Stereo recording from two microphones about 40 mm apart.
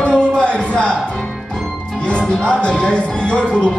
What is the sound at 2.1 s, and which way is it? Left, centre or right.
Speech, left.